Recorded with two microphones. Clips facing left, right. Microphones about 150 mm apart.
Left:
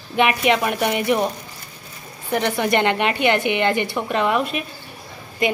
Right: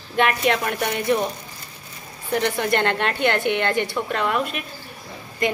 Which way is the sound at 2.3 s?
10° left (ahead or behind).